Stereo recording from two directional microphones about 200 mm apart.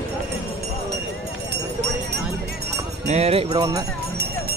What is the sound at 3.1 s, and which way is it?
Speech, 30° right (ahead or behind).